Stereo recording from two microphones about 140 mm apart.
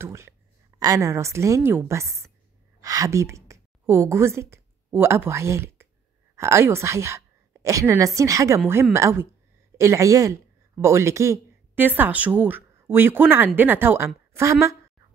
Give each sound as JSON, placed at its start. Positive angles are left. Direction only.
{"t": 0.0, "sound": "a woman's voice", "side_deg": -20}